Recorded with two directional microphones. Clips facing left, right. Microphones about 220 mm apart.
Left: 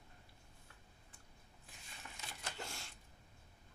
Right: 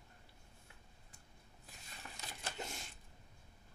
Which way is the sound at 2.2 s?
40° right (ahead or behind).